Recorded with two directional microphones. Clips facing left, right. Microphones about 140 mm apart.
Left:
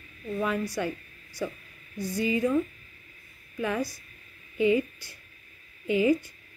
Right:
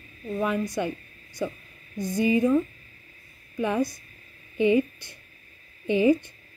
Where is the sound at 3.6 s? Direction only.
20° right (ahead or behind).